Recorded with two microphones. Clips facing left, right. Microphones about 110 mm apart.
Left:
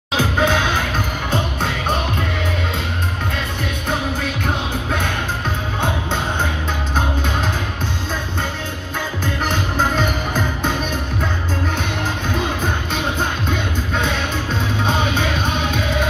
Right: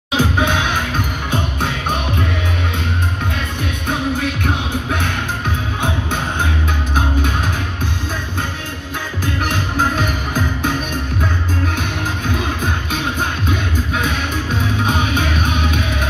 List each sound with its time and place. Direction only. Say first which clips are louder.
0.2 s music: even; 15° right (ahead or behind)
9.2 s music: right 2 dB; 15° right (ahead or behind)